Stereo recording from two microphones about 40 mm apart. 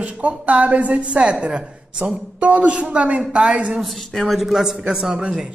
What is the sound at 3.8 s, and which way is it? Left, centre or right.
Speech, centre.